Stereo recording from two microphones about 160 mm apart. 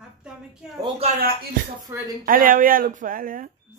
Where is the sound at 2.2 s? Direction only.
60° right (ahead or behind).